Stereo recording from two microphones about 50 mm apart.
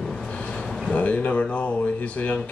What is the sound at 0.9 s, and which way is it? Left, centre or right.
Speech, left.